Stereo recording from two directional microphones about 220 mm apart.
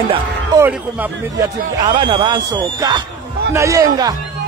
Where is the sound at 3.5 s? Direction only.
15° right (ahead or behind).